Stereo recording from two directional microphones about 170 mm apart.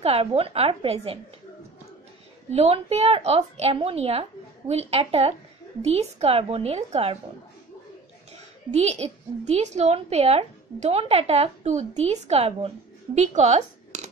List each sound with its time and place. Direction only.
0.0 s a woman's voice: 35° right (ahead or behind)
2.5 s a woman's voice: 40° right (ahead or behind)
8.7 s a woman's voice: 40° right (ahead or behind)